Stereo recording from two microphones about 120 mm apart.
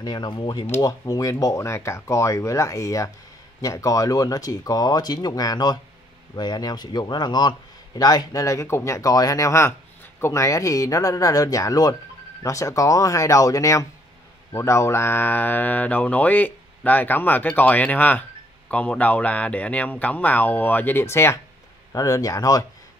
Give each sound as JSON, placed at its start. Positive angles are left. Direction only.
{"t": 0.0, "sound": "speech", "side_deg": 35}